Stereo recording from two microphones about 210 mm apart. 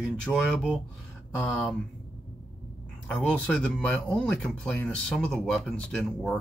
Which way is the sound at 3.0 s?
5° left (ahead or behind).